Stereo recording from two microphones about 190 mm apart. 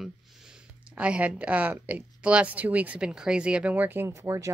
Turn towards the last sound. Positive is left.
turn(degrees=-15)  # may be behind; listen again after turning